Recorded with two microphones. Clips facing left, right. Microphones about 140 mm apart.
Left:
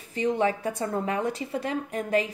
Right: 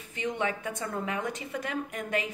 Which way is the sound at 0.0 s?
35° left (ahead or behind).